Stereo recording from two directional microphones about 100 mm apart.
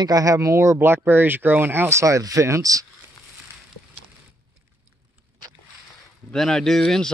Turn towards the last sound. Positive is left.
turn(degrees=5)  # may be behind; listen again after turning